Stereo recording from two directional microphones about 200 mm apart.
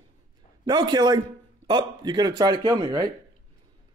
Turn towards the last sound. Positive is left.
turn(degrees=-20)  # may be behind; listen again after turning